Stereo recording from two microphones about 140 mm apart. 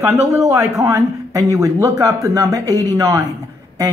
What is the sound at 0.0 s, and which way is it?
Speech, 25° right (ahead or behind).